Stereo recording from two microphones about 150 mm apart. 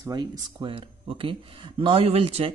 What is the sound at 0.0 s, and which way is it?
Speech, 25° right (ahead or behind).